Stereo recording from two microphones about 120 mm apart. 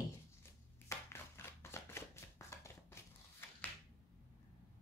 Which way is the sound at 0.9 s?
20° left (ahead or behind).